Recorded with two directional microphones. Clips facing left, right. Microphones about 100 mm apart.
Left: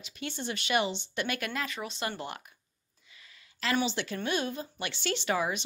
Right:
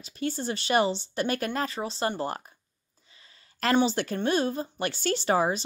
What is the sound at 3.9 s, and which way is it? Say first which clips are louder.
A woman's voice: right 5 dB; 45° right (ahead or behind).